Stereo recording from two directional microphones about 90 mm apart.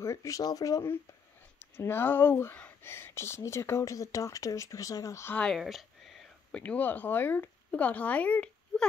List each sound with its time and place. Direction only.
0.0 s speech: 35° left (ahead or behind)
1.6 s speech: 25° left (ahead or behind)
5.5 s a sound: centre (ahead or behind)
6.5 s speech: 15° left (ahead or behind)